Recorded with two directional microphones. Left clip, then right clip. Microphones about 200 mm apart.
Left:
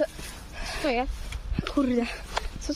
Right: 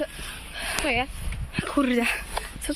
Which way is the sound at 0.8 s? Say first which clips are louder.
Even; 35° left (ahead or behind).